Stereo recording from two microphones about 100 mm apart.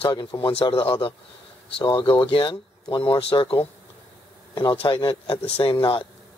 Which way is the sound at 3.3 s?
45° left (ahead or behind).